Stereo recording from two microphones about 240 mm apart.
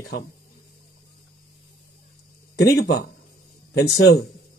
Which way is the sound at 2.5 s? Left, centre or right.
Left.